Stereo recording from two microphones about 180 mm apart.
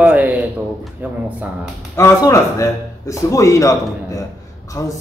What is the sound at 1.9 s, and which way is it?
A man's voice, 15° left (ahead or behind).